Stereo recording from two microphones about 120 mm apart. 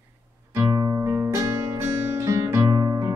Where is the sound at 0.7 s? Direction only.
25° right (ahead or behind).